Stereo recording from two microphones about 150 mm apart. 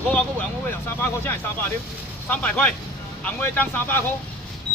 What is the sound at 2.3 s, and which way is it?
Speech, 10° left (ahead or behind).